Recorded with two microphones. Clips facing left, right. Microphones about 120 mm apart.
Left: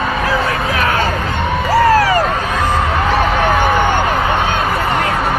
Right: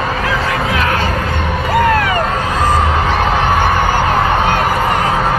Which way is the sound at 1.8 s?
35° left (ahead or behind).